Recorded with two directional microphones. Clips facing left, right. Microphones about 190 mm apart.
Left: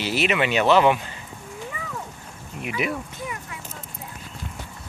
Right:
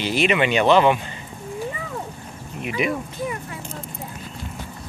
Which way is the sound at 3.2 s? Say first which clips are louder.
Right 6 dB; 35° right (ahead or behind).